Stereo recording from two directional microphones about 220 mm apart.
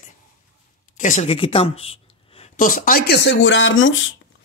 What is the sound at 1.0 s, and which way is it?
Speech, 35° left (ahead or behind).